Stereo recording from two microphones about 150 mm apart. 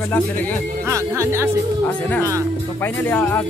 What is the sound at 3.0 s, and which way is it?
Speech, 10° left (ahead or behind).